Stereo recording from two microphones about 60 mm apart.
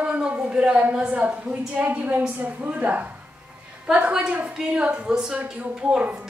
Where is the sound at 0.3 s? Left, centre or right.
Centre.